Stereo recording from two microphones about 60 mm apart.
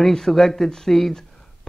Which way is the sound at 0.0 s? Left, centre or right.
Centre.